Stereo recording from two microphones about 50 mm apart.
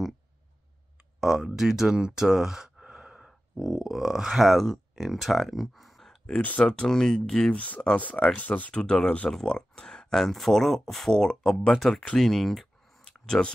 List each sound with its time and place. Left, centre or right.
1.2 s speech: centre
6.6 s speech: centre
7.5 s speech: left
8.7 s speech: centre
11.9 s speech: left
12.2 s speech: centre
13.4 s speech: left